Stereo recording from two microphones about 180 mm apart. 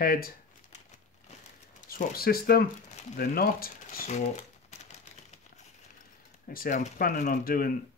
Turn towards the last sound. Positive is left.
turn(degrees=55)  # may be behind; listen again after turning